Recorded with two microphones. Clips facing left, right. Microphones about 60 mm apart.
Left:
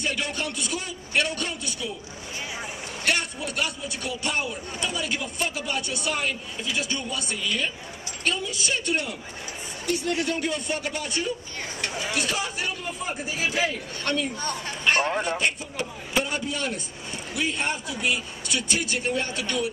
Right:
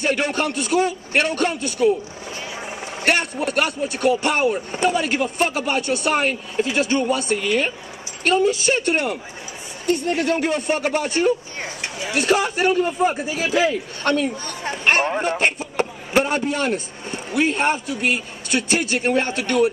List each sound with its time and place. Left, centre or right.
0.0 s a man's voice: right
3.0 s a man's voice: right
8.6 s a man's voice: right
13.1 s speech: right
15.2 s a man's voice: right